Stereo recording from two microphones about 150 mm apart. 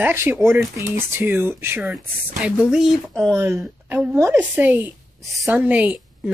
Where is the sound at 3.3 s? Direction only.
20° right (ahead or behind).